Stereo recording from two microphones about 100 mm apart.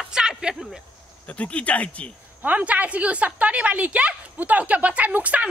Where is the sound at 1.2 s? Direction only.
15° left (ahead or behind).